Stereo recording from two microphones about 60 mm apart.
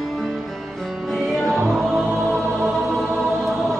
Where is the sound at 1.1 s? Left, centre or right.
Centre.